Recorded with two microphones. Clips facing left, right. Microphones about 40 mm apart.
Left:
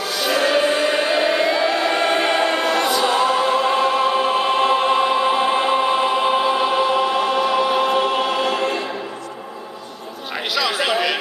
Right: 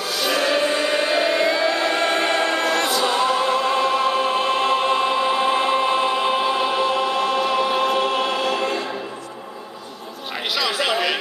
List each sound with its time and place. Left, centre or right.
0.0 s choir: centre
8.4 s music: centre
10.7 s chatter: centre